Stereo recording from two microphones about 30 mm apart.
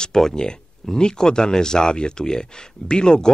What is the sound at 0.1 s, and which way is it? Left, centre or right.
Speech, centre.